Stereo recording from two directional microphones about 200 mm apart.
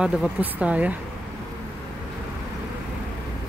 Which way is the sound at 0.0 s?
5° right (ahead or behind).